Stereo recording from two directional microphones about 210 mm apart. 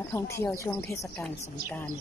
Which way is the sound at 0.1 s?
10° left (ahead or behind).